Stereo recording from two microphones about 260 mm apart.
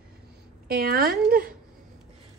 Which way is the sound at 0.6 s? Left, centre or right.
Right.